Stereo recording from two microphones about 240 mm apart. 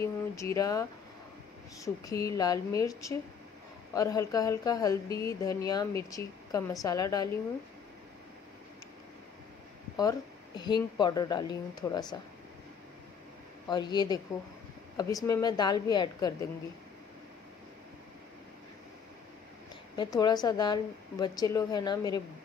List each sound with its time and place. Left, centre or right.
0.0 s speech: centre
9.9 s speech: centre
13.7 s speech: centre
15.2 s speech: centre
20.0 s speech: centre